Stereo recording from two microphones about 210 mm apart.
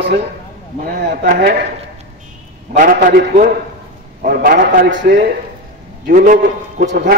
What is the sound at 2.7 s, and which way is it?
A man's voice, 40° right (ahead or behind).